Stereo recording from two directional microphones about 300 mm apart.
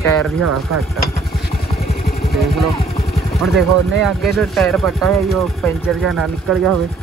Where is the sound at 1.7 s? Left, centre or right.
Left.